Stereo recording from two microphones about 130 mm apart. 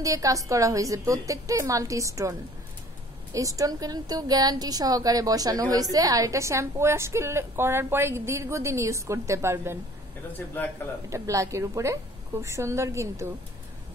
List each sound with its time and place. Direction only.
0.0 s a woman's voice: 25° right (ahead or behind)
3.3 s a woman's voice: 25° right (ahead or behind)
10.6 s a man's voice: 15° left (ahead or behind)
11.1 s a woman's voice: 25° right (ahead or behind)